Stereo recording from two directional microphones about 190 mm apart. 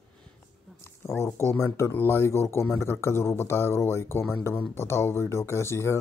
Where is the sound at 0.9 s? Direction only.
15° left (ahead or behind).